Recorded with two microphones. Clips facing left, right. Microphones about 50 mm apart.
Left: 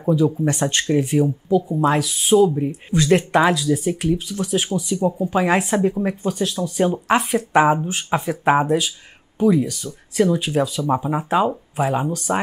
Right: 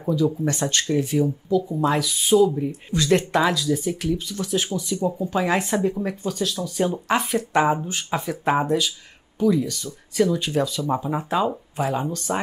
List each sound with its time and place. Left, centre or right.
0.0 s speech: left
0.3 s speech: centre; by 1.6 s left
1.6 s speech: centre
2.3 s speech: centre
7.2 s speech: centre
7.5 s speech: centre
9.4 s speech: left
10.4 s speech: centre